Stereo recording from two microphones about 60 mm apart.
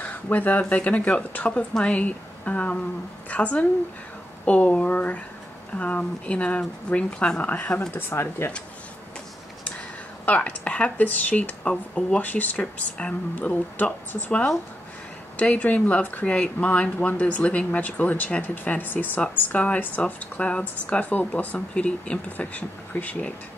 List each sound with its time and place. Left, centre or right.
0.0 s speech: left
7.4 s speech: left
8.1 s speech: left
10.2 s speech: left
15.3 s speech: left